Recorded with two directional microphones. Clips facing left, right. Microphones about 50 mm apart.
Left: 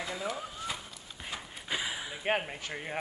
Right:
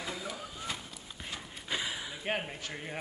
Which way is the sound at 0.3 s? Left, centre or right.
Centre.